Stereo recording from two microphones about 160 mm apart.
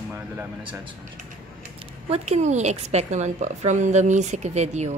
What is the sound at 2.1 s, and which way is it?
A woman's voice, 40° right (ahead or behind).